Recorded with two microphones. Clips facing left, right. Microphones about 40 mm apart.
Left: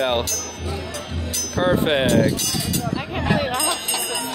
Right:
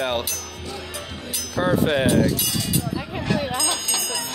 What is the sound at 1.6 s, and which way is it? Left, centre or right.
Speech, left.